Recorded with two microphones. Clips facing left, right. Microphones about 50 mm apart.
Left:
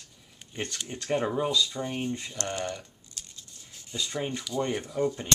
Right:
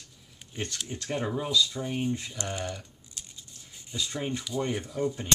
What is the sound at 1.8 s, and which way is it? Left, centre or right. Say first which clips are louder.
Speech: right 1 dB; centre.